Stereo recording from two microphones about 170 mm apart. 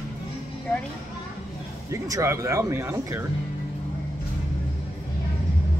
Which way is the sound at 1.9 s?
20° right (ahead or behind).